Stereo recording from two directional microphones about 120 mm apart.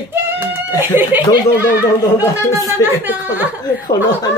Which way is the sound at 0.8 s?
15° right (ahead or behind).